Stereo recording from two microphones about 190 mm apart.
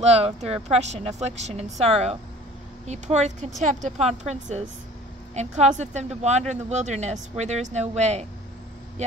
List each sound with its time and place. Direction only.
0.0 s speech: 35° right (ahead or behind)